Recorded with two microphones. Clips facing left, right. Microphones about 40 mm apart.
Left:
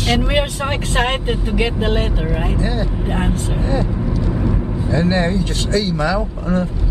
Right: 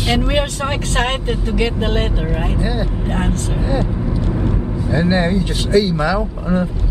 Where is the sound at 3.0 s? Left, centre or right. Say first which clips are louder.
Even; centre.